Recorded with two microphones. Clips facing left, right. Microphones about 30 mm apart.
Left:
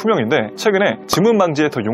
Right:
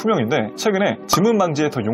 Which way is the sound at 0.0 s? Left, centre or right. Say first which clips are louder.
Left 3 dB; centre.